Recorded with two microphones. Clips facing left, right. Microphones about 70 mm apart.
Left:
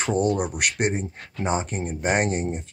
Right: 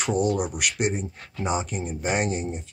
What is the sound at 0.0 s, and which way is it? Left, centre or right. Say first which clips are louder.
Speech: left 1 dB; left.